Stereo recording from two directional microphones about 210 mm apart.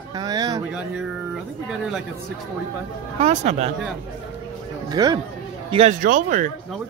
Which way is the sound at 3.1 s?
30° right (ahead or behind).